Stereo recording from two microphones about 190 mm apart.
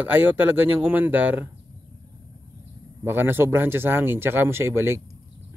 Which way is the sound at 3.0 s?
10° right (ahead or behind).